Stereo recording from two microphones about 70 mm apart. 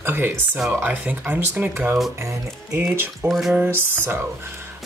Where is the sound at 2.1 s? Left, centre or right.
Right.